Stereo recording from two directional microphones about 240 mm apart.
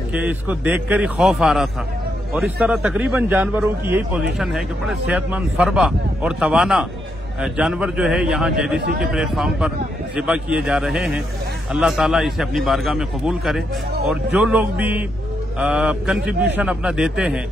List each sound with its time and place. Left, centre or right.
0.1 s a man's voice: centre